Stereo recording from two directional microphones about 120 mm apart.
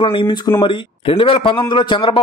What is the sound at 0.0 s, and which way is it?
A man's voice, 45° left (ahead or behind).